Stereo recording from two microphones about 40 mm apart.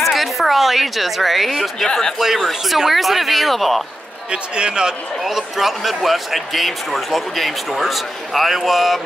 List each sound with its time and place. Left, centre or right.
0.0 s a woman's voice: centre
1.9 s speech: centre
2.1 s speech: centre
4.3 s a man's voice: right
5.2 s speech: centre